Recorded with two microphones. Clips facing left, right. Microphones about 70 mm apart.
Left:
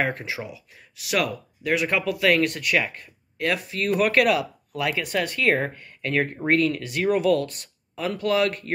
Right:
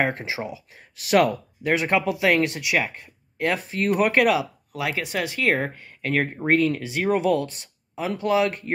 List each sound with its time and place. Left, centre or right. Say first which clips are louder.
0.0 s speech: right 2 dB; right
1.1 s speech: right 6 dB; right; by 8.7 s centre